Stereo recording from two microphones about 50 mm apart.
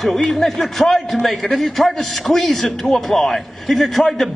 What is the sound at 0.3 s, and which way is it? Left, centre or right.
A man's voice, centre.